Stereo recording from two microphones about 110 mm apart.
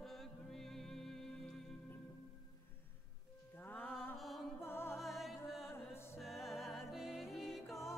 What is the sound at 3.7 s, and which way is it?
Mantra, 15° left (ahead or behind).